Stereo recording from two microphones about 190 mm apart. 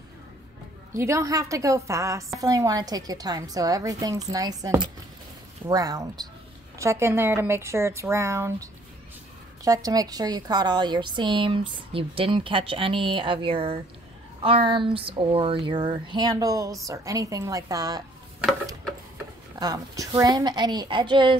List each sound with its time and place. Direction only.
0.9 s a woman's voice: 15° right (ahead or behind)
9.7 s a woman's voice: 20° right (ahead or behind)
19.6 s a woman's voice: 20° right (ahead or behind)